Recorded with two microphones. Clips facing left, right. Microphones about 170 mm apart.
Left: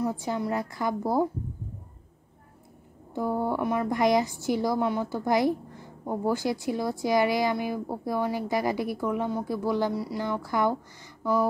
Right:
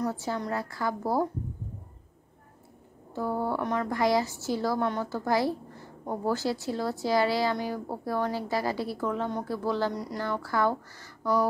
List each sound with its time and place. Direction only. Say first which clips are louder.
0.0 s a woman's voice: left 2 dB; 15° left (ahead or behind)
3.2 s a woman's voice: left 2 dB; 15° left (ahead or behind)